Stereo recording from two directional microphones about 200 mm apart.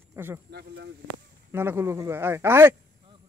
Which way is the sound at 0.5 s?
55° right (ahead or behind).